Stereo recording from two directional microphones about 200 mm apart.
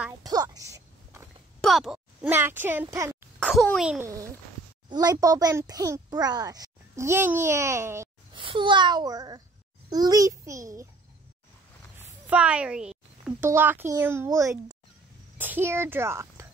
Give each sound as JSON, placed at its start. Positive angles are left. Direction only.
{"t": 0.2, "sound": "a sound", "side_deg": -20}
{"t": 1.6, "sound": "speech", "side_deg": 0}
{"t": 3.3, "sound": "a child's voice", "side_deg": 0}
{"t": 4.0, "sound": "speech", "side_deg": -15}
{"t": 8.4, "sound": "a child's voice", "side_deg": -25}
{"t": 12.3, "sound": "a woman's voice", "side_deg": -5}